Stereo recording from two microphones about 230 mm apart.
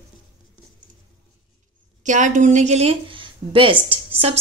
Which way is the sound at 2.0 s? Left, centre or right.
Right.